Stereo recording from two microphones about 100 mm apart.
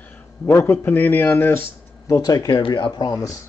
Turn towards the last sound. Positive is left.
turn(degrees=35)  # may be behind; listen again after turning